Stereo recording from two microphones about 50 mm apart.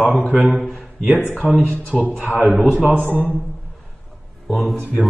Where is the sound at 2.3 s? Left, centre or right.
Right.